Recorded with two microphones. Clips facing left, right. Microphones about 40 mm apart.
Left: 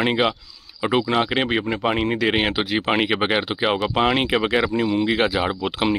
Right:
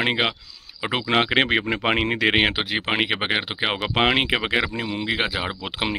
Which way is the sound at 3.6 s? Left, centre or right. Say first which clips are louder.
Left 1 dB; right.